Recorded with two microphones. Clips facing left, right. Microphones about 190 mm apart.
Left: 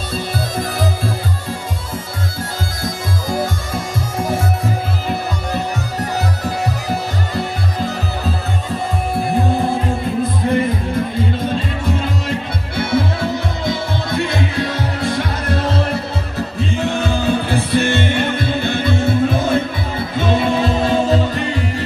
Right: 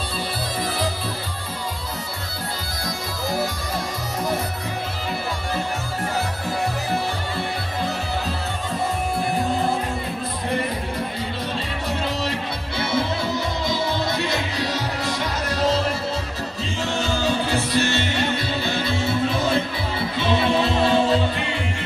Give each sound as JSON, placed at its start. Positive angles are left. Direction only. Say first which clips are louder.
{"t": 0.6, "sound": "music", "louder": "left 4 dB", "side_deg": 45}
{"t": 2.8, "sound": "music", "louder": "left 4 dB", "side_deg": 50}
{"t": 12.7, "sound": "music", "louder": "left 5 dB", "side_deg": 50}